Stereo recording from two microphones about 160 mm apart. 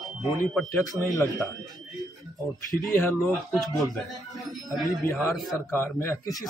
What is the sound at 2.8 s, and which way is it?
Speech, centre (ahead or behind).